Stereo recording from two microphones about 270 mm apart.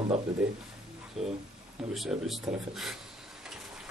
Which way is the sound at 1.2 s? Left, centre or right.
Centre.